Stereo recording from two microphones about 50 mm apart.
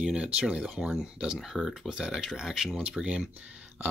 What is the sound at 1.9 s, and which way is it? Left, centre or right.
Speech, centre.